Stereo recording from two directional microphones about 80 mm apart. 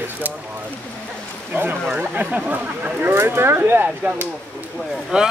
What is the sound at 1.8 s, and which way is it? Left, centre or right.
Speech, centre.